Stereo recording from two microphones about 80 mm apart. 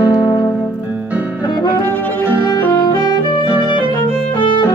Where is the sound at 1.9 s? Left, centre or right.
Left.